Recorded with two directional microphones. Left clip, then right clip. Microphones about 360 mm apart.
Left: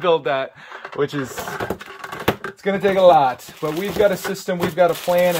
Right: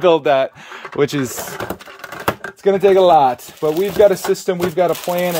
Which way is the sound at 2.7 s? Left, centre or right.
Right.